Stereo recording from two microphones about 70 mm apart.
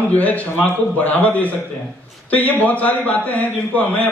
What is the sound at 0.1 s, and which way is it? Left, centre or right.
A man's voice, left.